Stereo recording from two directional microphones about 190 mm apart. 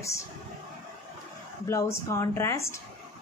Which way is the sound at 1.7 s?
15° left (ahead or behind).